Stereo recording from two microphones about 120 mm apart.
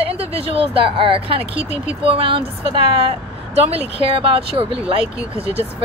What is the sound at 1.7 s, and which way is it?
Speech, 70° left (ahead or behind).